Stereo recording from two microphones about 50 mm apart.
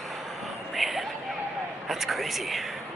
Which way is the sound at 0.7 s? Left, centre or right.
Centre.